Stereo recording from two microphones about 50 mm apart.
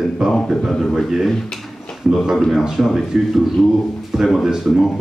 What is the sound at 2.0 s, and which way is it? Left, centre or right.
Speech, right.